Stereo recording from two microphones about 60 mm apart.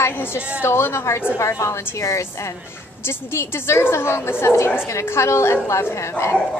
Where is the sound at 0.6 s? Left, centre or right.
Left.